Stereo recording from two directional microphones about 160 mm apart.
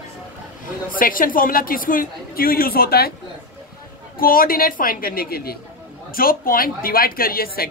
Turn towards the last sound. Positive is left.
turn(degrees=70)  # may be behind; listen again after turning